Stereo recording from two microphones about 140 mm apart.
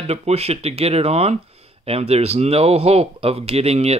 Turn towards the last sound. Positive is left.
turn(degrees=-50)  # may be behind; listen again after turning